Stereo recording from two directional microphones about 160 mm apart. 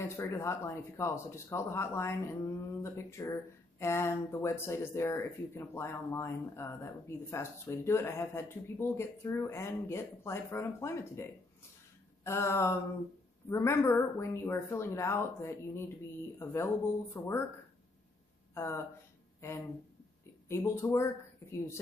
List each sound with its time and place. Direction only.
0.0 s speech: 20° left (ahead or behind)
17.1 s speech: 20° left (ahead or behind)
18.5 s speech: 15° left (ahead or behind)